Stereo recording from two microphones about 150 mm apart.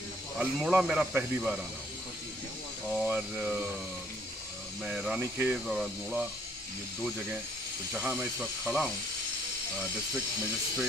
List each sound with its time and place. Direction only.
0.4 s speech: 5° right (ahead or behind)
2.9 s speech: 5° right (ahead or behind)
4.8 s speech: 5° right (ahead or behind)
5.2 s speech: 15° right (ahead or behind)
5.7 s speech: centre (ahead or behind)
7.9 s speech: 5° right (ahead or behind)